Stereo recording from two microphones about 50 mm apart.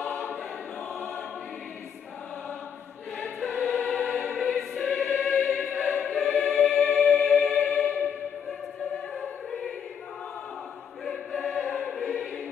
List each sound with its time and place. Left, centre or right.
0.0 s choir: left
3.4 s choir: left
6.3 s music: left
11.5 s choir: left